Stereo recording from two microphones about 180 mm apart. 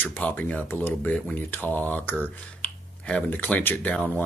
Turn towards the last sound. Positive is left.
turn(degrees=10)  # may be behind; listen again after turning